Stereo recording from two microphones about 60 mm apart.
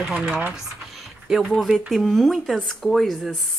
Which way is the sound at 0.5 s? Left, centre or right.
Centre.